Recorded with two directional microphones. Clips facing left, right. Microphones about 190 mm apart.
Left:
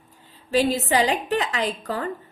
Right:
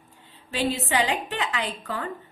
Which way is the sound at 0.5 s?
40° left (ahead or behind).